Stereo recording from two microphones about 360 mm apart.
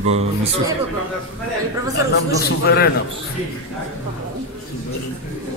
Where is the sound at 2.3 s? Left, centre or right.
Left.